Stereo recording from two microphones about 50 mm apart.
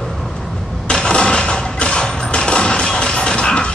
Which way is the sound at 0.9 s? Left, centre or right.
Centre.